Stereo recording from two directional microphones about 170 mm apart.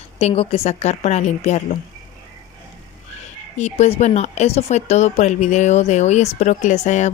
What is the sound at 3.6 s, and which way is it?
Speech, 40° left (ahead or behind).